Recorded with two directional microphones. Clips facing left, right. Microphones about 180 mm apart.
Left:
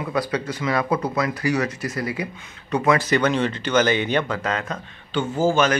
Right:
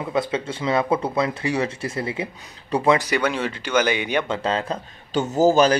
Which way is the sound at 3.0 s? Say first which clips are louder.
Left 3 dB; 10° right (ahead or behind).